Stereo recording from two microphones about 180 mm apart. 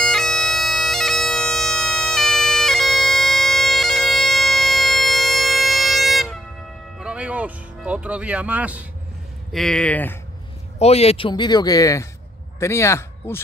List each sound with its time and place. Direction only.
0.0 s bagpipes: centre (ahead or behind)
7.0 s music: 5° right (ahead or behind)
9.5 s speech: centre (ahead or behind)
10.8 s speech: 35° left (ahead or behind); by 13.4 s 15° left (ahead or behind)